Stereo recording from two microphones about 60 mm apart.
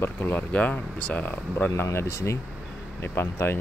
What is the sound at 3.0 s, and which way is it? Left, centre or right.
Speech, left.